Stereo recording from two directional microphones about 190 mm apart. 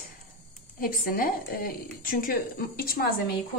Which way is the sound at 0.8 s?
50° left (ahead or behind).